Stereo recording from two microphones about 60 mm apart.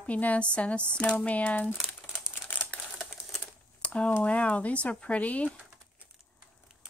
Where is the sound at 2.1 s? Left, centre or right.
Left.